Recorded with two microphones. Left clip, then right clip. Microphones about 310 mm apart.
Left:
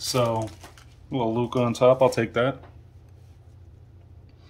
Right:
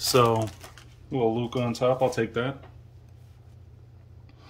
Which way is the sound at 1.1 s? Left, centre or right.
Centre.